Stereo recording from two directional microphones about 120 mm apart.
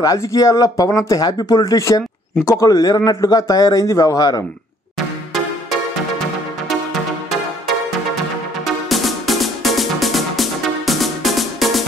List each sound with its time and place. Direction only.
0.0 s speech: 30° left (ahead or behind)
8.6 s music: centre (ahead or behind)